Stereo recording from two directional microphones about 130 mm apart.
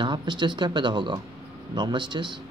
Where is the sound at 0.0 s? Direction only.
35° right (ahead or behind).